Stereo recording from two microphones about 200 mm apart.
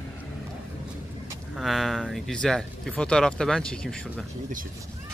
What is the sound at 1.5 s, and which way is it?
Speech, centre (ahead or behind).